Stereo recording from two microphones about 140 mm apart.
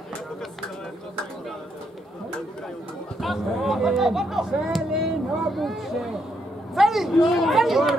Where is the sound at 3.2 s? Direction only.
Centre (ahead or behind).